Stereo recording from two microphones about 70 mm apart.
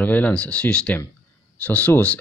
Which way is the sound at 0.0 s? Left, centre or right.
Left.